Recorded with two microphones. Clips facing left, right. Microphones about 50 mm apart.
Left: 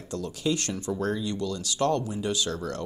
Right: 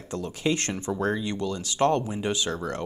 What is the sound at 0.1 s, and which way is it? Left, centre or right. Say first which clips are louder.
Speech: right 1 dB; right.